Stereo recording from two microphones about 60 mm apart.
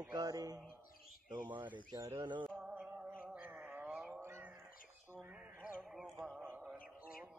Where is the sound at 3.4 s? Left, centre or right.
Right.